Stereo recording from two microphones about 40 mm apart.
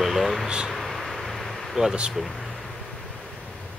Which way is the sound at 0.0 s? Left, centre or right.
Centre.